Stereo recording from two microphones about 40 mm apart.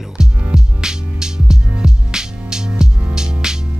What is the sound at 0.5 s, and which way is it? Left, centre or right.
Music, centre.